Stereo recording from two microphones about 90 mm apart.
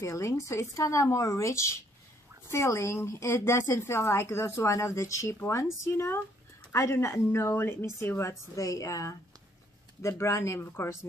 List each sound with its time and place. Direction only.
0.0 s a woman's voice: 35° left (ahead or behind)